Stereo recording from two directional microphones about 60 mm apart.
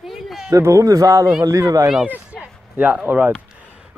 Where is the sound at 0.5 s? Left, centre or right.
Right.